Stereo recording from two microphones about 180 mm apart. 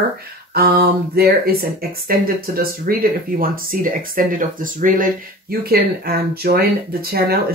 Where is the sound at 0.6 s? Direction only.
60° right (ahead or behind).